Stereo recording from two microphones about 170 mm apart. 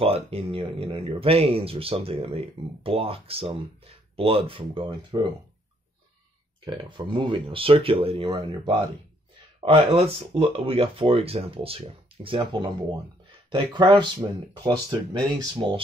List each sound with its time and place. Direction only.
0.0 s speech: 35° right (ahead or behind)
6.6 s speech: 25° right (ahead or behind)